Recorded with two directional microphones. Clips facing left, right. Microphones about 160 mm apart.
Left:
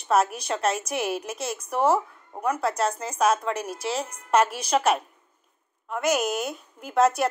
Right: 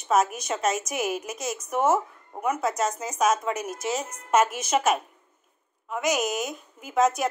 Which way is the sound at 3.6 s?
50° right (ahead or behind).